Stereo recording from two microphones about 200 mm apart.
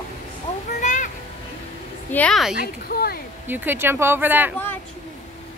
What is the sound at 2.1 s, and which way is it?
Speech, 5° left (ahead or behind).